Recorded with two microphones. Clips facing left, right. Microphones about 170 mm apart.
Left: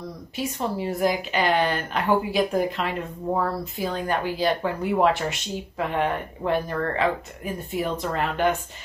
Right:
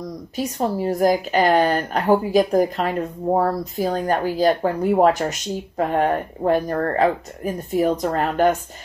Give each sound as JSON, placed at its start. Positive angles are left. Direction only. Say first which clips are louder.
{"t": 0.4, "sound": "speech", "louder": "right 5 dB", "side_deg": -40}